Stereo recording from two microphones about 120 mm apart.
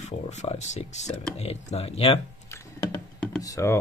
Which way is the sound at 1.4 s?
60° left (ahead or behind).